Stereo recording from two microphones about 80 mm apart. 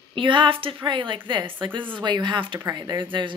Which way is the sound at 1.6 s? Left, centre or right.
Right.